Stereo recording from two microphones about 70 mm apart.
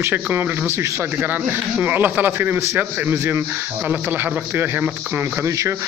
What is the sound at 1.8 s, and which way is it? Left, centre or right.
A man's voice, right.